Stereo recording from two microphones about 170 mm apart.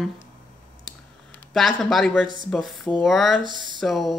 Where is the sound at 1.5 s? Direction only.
Centre (ahead or behind).